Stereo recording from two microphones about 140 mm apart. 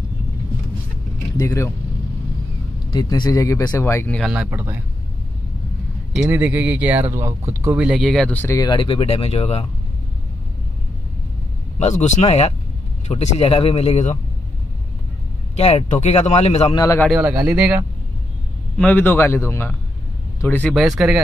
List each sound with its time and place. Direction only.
1.3 s speech: 25° left (ahead or behind)
2.9 s a man's voice: 30° left (ahead or behind)
4.2 s speech: 5° right (ahead or behind)
4.5 s speech: 15° right (ahead or behind)
6.1 s speech: 10° right (ahead or behind)
7.8 s speech: 5° right (ahead or behind)
8.3 s a man's voice: 15° left (ahead or behind)
8.5 s speech: 30° left (ahead or behind); by 9.7 s 50° left (ahead or behind)
11.8 s speech: 55° left (ahead or behind)
15.5 s speech: 50° left (ahead or behind)
16.7 s speech: 25° left (ahead or behind)
17.1 s speech: 5° right (ahead or behind)
18.8 s a man's voice: 10° left (ahead or behind)
21.0 s speech: 5° right (ahead or behind)